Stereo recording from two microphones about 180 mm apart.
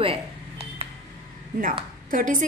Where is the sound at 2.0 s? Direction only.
50° right (ahead or behind).